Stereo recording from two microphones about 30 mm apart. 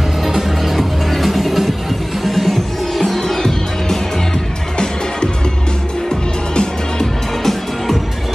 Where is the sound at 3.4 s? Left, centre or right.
Centre.